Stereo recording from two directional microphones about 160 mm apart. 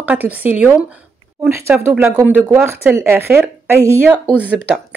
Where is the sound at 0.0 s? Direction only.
10° right (ahead or behind).